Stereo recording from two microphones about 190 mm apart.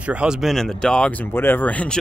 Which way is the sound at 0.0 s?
5° right (ahead or behind).